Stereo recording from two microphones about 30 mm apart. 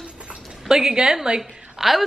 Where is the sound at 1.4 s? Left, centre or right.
Centre.